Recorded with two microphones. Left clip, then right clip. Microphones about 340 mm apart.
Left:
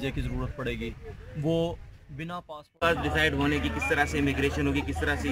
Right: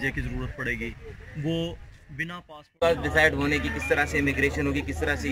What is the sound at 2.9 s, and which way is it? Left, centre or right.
Speech, centre.